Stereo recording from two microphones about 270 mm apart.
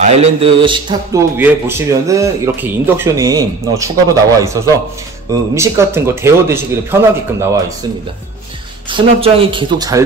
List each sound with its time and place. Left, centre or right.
0.0 s a man's voice: right
8.8 s a man's voice: centre